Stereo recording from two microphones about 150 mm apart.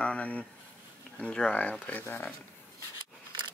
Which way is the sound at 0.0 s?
10° left (ahead or behind).